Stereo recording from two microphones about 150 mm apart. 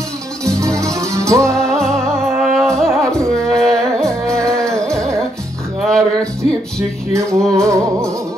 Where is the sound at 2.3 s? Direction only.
5° right (ahead or behind).